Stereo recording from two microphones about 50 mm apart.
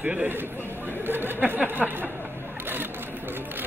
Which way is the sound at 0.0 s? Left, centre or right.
Right.